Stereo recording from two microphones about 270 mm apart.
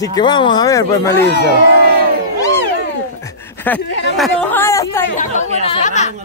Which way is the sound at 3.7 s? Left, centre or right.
Centre.